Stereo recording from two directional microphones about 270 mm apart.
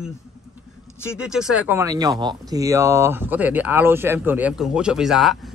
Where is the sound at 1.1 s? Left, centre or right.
Centre.